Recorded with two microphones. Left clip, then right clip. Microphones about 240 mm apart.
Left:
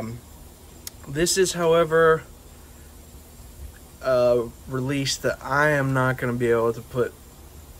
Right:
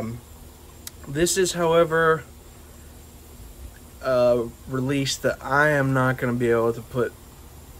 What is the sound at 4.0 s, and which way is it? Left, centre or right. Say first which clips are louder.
Speech: even; centre.